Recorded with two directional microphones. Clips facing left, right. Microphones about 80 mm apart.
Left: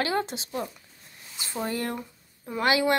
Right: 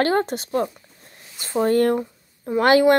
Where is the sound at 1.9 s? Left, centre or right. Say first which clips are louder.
Right 11 dB; right.